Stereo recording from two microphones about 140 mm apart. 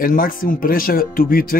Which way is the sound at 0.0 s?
90° left.